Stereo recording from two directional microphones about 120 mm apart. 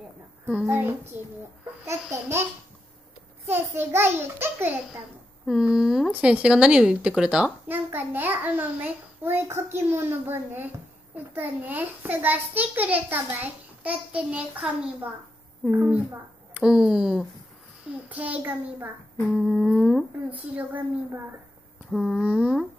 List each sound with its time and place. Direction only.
1.1 s a child's voice: 15° right (ahead or behind)
3.4 s a child's voice: 20° right (ahead or behind)
5.5 s a child's voice: 5° right (ahead or behind)
19.3 s humming: centre (ahead or behind)
20.2 s a child's voice: 15° right (ahead or behind)